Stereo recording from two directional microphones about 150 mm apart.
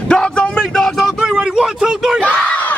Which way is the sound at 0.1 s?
5° left (ahead or behind).